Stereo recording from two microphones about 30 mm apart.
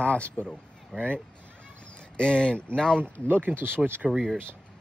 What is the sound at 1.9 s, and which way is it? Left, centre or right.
Speech, left.